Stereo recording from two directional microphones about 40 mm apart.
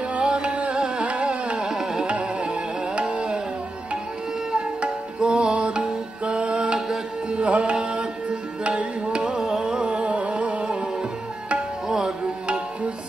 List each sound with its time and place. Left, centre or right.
0.2 s carnatic music: right
1.7 s carnatic music: centre
2.0 s music: right
4.5 s music: right